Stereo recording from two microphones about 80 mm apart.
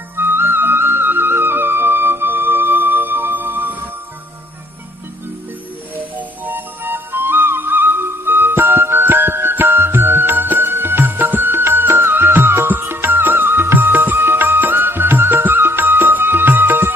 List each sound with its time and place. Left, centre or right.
0.1 s music: right
6.1 s music: right